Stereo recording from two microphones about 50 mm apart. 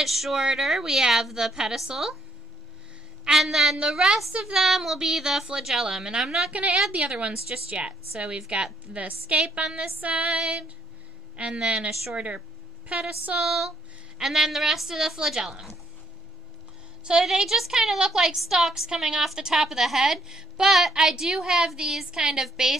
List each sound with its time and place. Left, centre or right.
0.0 s a woman's voice: centre
3.3 s a woman's voice: centre
8.9 s a woman's voice: right
9.7 s a woman's voice: centre
9.9 s a woman's voice: right
11.9 s a woman's voice: centre
13.4 s a woman's voice: centre
17.0 s a woman's voice: centre